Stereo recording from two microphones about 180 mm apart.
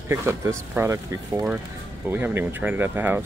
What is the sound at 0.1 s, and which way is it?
Speech, 15° right (ahead or behind).